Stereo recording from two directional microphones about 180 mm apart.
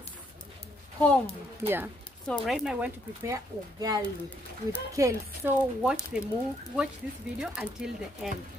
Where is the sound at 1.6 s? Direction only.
10° right (ahead or behind).